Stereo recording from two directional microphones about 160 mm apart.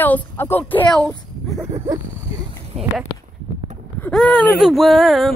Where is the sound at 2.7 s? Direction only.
40° right (ahead or behind).